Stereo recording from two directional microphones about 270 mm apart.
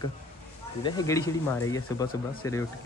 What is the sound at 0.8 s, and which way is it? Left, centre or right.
Speech, centre.